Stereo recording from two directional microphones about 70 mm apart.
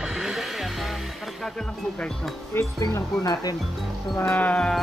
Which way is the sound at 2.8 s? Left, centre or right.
Left.